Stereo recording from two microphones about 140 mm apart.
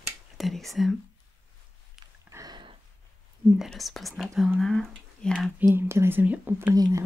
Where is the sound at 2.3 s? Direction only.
25° right (ahead or behind).